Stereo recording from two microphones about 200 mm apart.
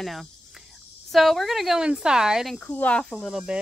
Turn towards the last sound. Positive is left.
turn(degrees=0)  # may be behind; listen again after turning